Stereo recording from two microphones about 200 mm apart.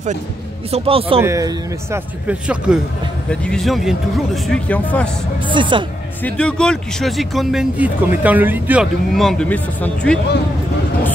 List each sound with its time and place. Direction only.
0.7 s a man's voice: 30° right (ahead or behind)
1.2 s speech: 15° right (ahead or behind)
2.2 s speech: 5° right (ahead or behind)
5.4 s a man's voice: 25° right (ahead or behind)
6.2 s speech: 5° left (ahead or behind)